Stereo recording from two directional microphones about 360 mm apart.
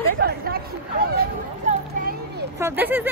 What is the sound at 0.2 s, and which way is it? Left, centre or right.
Chatter, right.